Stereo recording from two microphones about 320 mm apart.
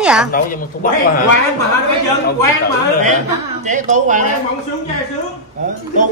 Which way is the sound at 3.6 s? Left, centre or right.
Right.